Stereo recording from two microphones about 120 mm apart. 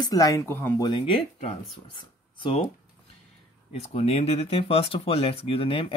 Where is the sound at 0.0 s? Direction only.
30° left (ahead or behind).